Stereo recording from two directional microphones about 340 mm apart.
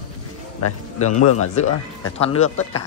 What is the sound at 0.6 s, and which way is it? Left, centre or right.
Speech, left.